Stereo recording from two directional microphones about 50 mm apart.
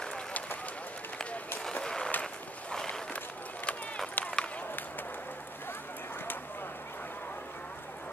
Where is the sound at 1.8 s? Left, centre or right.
Centre.